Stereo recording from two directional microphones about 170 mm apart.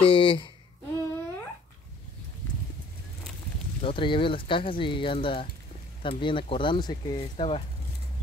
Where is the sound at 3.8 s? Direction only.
30° left (ahead or behind).